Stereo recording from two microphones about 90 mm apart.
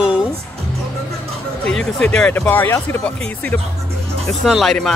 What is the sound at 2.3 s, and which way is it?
Speech, 20° left (ahead or behind).